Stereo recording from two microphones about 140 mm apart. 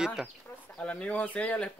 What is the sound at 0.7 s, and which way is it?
Speech, 10° left (ahead or behind).